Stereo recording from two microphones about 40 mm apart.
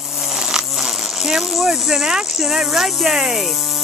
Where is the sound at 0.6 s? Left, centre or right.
Centre.